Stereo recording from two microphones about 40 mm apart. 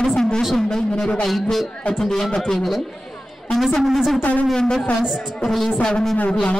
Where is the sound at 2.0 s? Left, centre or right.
Centre.